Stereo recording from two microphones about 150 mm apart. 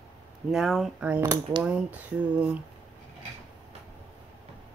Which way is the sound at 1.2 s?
20° right (ahead or behind).